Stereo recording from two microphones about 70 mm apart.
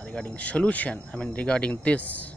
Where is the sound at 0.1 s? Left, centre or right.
Centre.